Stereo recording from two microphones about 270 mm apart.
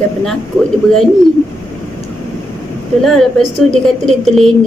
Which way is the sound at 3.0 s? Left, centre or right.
Centre.